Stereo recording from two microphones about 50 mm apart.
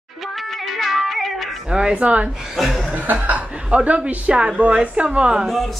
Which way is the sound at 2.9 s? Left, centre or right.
Right.